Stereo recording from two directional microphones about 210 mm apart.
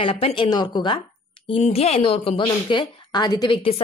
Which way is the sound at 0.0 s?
25° left (ahead or behind).